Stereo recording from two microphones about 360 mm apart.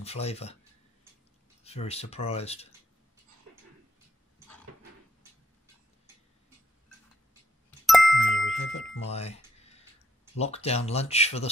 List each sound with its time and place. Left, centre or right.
0.0 s speech: centre
1.6 s speech: centre
7.8 s a sound: centre
8.7 s speech: left
9.1 s a sound: centre
10.4 s speech: centre